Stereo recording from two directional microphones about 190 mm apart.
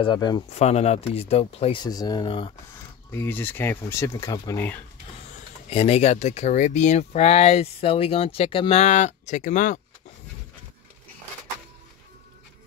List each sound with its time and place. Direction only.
0.0 s speech: 20° left (ahead or behind)
0.5 s speech: 35° left (ahead or behind)
3.1 s speech: 10° left (ahead or behind)
5.7 s speech: 30° left (ahead or behind)